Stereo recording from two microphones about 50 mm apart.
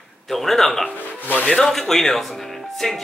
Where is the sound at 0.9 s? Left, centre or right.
Left.